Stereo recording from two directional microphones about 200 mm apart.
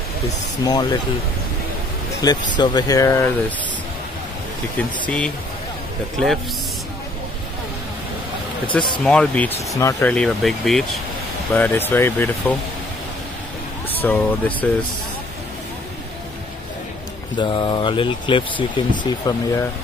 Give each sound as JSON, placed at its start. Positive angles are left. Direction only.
{"t": 0.7, "sound": "speech", "side_deg": 20}
{"t": 2.5, "sound": "speech", "side_deg": 20}
{"t": 4.7, "sound": "speech", "side_deg": 5}
{"t": 9.0, "sound": "speech", "side_deg": 5}
{"t": 13.8, "sound": "speech", "side_deg": 10}
{"t": 17.4, "sound": "speech", "side_deg": 25}